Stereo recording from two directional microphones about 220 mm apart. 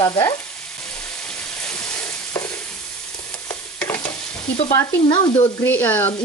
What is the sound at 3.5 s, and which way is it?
Stir, 10° left (ahead or behind).